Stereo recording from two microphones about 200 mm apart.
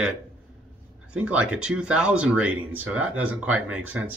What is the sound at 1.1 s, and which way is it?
Speech, 5° right (ahead or behind).